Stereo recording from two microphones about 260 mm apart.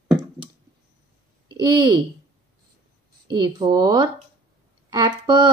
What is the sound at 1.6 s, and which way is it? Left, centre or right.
Speech, centre.